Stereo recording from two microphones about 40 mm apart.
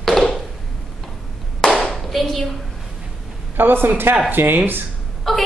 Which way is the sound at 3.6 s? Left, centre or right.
Right.